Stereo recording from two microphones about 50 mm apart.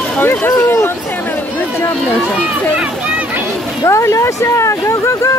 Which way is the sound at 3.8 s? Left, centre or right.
Left.